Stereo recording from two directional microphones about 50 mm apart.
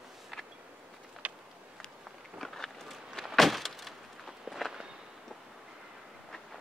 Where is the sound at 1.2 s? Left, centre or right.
Right.